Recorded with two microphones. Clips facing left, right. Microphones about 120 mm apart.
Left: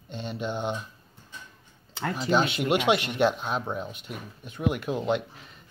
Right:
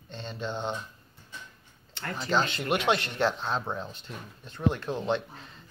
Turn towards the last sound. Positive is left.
turn(degrees=15)  # may be behind; listen again after turning